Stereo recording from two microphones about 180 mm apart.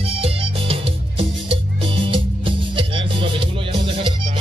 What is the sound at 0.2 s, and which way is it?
Music, 30° right (ahead or behind).